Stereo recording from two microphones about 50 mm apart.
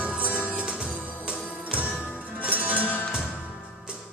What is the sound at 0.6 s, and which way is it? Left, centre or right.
Music, centre.